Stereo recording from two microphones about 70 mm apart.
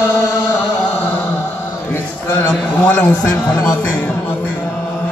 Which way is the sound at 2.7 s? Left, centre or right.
Centre.